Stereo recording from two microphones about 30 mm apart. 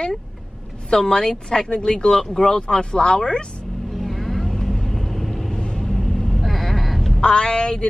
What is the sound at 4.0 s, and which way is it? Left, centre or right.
Vehicle, centre.